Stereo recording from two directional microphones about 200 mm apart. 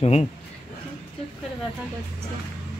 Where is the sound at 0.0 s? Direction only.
30° left (ahead or behind).